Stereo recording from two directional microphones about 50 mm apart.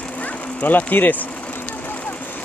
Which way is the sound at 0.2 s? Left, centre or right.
Left.